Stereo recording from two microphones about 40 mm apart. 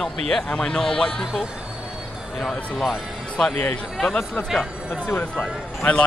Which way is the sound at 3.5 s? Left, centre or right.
Left.